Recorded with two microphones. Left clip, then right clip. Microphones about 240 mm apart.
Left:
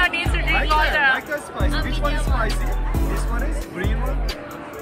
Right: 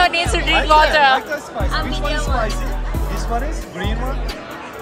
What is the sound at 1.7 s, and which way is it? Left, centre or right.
Speech, right.